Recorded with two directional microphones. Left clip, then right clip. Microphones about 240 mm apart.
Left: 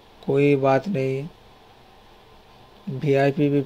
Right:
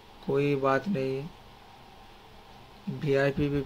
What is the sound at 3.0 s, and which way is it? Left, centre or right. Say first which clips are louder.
Speech: left 7 dB; centre.